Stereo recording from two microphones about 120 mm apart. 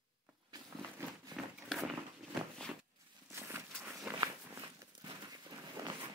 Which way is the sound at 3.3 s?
20° right (ahead or behind).